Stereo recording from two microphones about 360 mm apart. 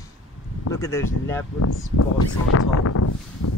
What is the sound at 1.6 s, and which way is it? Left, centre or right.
Speech, left.